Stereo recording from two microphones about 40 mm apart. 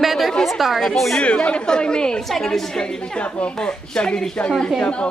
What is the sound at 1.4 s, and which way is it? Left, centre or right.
Speech, left.